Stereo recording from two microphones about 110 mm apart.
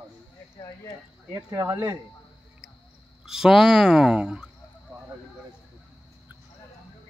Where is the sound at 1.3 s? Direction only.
30° right (ahead or behind).